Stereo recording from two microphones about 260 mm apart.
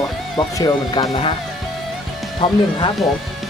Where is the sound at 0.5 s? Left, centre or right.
Centre.